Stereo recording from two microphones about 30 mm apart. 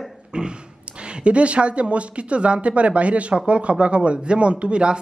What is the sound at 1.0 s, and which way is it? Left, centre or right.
A woman's voice, right.